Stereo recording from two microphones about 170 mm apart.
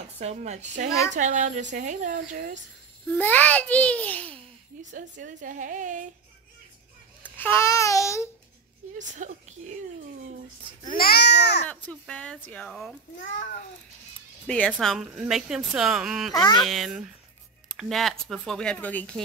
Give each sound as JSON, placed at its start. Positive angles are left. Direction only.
{"t": 0.2, "sound": "a woman's voice", "side_deg": -40}
{"t": 3.2, "sound": "speech", "side_deg": 10}
{"t": 4.9, "sound": "a woman's voice", "side_deg": -50}
{"t": 7.2, "sound": "speech", "side_deg": 10}
{"t": 8.9, "sound": "a woman's voice", "side_deg": -45}
{"t": 11.0, "sound": "speech", "side_deg": 70}
{"t": 11.6, "sound": "speech", "side_deg": 10}
{"t": 14.7, "sound": "a woman's voice", "side_deg": 0}
{"t": 16.3, "sound": "speech", "side_deg": 25}
{"t": 16.6, "sound": "a woman's voice", "side_deg": 0}